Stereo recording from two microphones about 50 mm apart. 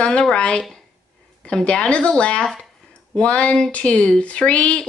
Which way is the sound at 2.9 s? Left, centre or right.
Left.